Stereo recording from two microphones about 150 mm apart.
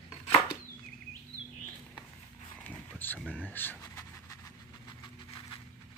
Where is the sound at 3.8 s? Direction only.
25° left (ahead or behind).